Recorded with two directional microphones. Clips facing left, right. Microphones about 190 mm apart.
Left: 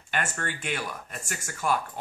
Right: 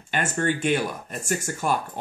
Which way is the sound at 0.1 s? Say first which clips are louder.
Right 7 dB; 25° right (ahead or behind).